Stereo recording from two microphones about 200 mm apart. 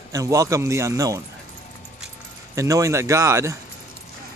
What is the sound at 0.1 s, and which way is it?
Speech, 15° right (ahead or behind).